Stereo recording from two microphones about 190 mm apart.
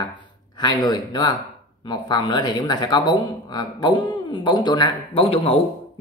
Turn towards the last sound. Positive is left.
turn(degrees=30)  # may be behind; listen again after turning